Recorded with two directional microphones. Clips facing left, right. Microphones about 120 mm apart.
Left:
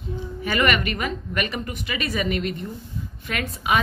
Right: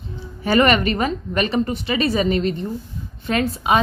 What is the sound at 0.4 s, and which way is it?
A woman's voice, 35° right (ahead or behind).